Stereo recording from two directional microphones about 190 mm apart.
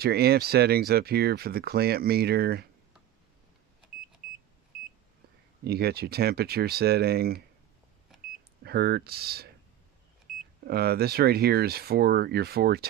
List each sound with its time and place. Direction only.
0.0 s speech: 55° right (ahead or behind)
4.2 s vehicle: 40° left (ahead or behind)
5.6 s speech: 55° right (ahead or behind)
8.6 s speech: 55° right (ahead or behind)
10.3 s vehicle: centre (ahead or behind)
10.7 s speech: 55° right (ahead or behind)